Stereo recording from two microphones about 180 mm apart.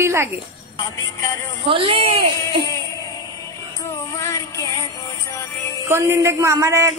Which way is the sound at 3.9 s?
15° left (ahead or behind).